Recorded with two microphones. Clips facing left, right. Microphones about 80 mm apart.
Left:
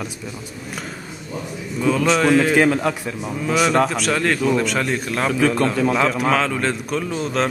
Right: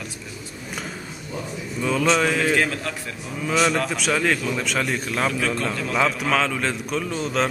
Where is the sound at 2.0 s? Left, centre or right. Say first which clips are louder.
Left 4 dB; centre.